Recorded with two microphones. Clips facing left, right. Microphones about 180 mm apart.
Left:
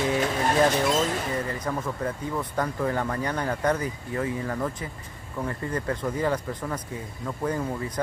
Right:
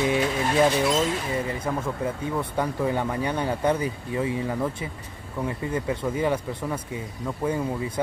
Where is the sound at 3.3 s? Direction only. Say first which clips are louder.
Right 2 dB; 25° right (ahead or behind).